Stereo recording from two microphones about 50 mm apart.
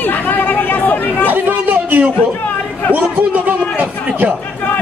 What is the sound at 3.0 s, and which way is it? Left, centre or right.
Speech, right.